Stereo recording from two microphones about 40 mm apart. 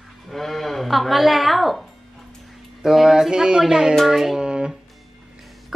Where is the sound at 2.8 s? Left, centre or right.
Centre.